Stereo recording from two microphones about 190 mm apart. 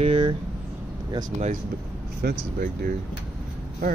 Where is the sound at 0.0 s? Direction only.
25° right (ahead or behind).